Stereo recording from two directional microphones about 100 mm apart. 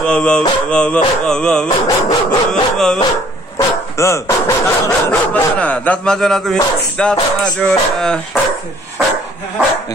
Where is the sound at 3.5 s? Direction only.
30° left (ahead or behind).